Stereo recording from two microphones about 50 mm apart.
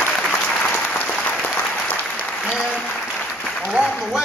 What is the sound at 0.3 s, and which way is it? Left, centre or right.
Applause, left.